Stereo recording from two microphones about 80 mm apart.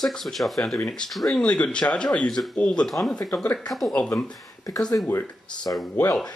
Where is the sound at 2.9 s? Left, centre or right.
Centre.